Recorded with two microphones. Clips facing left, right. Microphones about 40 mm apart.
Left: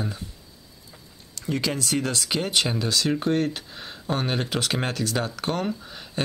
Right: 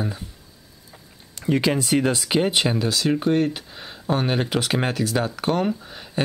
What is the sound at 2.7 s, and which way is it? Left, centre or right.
Speech, centre.